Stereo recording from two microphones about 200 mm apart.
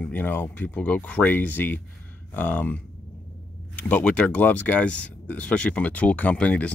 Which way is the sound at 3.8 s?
5° left (ahead or behind).